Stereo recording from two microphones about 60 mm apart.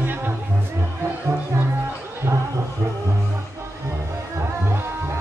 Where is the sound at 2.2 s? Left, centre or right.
Right.